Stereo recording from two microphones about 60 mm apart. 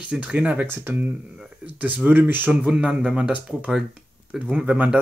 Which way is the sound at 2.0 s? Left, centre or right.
Right.